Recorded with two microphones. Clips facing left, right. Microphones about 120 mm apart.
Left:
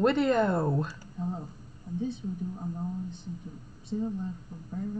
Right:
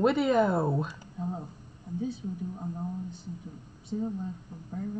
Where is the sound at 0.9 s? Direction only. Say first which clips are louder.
Even; 15° right (ahead or behind).